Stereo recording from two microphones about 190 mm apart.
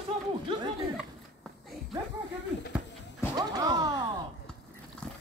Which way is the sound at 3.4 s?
20° right (ahead or behind).